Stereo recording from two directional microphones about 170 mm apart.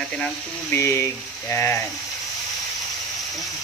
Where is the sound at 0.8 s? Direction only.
15° left (ahead or behind).